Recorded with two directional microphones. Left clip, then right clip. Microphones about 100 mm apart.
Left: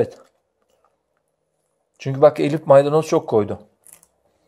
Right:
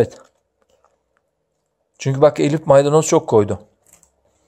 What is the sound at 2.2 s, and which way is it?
Speech, 30° right (ahead or behind).